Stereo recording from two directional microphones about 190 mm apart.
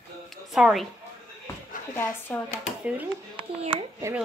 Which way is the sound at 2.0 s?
10° left (ahead or behind).